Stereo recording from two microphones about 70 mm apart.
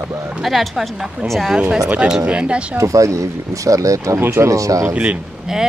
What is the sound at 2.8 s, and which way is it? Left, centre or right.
Speech, right.